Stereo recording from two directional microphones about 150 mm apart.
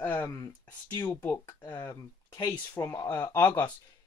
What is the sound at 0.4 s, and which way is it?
Speech, 25° left (ahead or behind).